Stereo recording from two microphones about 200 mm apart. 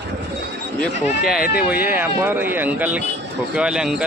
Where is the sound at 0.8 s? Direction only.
Centre (ahead or behind).